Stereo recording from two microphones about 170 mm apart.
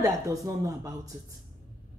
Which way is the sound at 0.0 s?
20° right (ahead or behind).